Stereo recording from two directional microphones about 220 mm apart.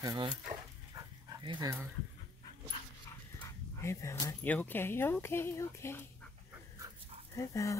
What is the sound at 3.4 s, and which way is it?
Speech, 15° left (ahead or behind).